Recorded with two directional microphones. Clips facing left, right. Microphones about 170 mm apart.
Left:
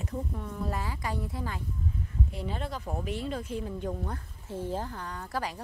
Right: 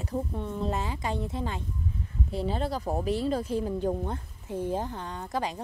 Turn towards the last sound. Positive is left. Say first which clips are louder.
# right 3 dB
turn(degrees=-20)  # may be behind; listen again after turning